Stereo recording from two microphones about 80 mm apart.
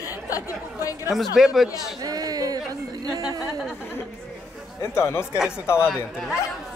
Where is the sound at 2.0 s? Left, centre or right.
Right.